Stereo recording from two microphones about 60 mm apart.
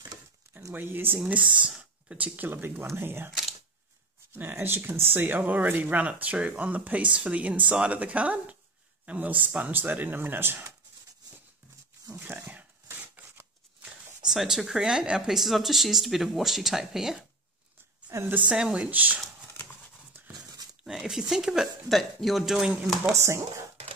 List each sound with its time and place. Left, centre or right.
0.7 s speech: right
1.2 s speech: right
4.4 s speech: right
12.4 s dog: right
13.2 s scissors: right
13.8 s speech: centre
18.5 s speech: centre
18.9 s speech: right
20.8 s speech: centre
23.1 s speech: right